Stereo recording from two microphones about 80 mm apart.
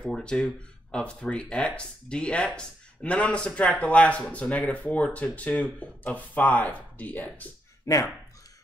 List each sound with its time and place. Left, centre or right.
0.2 s speech: centre
7.8 s speech: left